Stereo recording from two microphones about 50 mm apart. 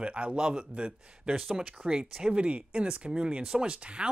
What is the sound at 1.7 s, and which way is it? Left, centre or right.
Speech, right.